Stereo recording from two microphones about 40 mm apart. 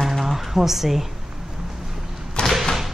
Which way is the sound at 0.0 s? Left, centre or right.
Centre.